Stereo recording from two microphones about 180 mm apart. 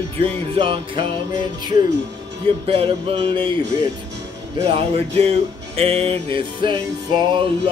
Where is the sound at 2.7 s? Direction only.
30° right (ahead or behind).